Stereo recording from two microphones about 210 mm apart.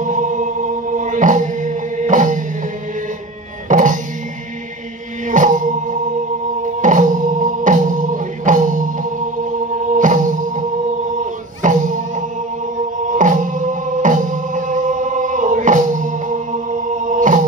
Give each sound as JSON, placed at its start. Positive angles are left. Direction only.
{"t": 0.0, "sound": "music", "side_deg": -35}
{"t": 3.6, "sound": "music", "side_deg": -40}
{"t": 5.3, "sound": "music", "side_deg": -40}
{"t": 9.9, "sound": "music", "side_deg": -40}
{"t": 11.6, "sound": "music", "side_deg": -40}
{"t": 13.1, "sound": "music", "side_deg": -40}